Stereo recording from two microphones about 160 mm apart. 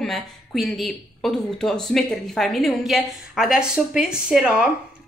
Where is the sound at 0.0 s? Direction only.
Centre (ahead or behind).